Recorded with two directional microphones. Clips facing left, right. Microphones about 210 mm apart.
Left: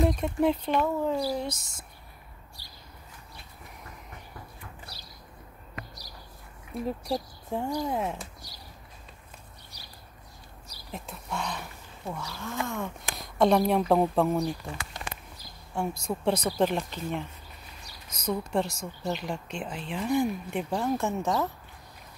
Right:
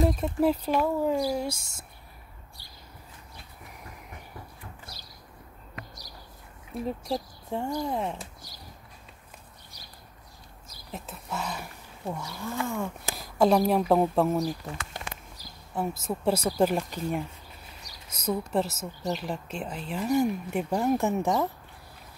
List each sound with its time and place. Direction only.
0.0 s speech: centre (ahead or behind)
6.7 s speech: centre (ahead or behind)
10.9 s speech: centre (ahead or behind)
12.1 s speech: 15° right (ahead or behind)
13.4 s speech: centre (ahead or behind)
15.7 s speech: 5° right (ahead or behind)